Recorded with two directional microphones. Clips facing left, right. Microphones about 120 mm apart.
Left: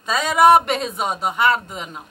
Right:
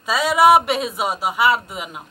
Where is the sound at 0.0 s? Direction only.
5° right (ahead or behind).